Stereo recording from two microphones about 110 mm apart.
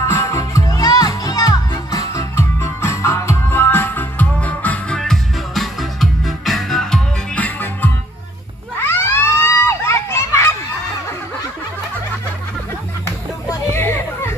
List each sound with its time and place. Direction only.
0.0 s music: 25° left (ahead or behind)
8.7 s crowd: 20° left (ahead or behind)
13.7 s children playing: 20° left (ahead or behind)